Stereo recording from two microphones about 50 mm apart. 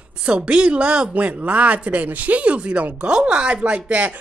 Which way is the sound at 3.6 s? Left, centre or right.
Right.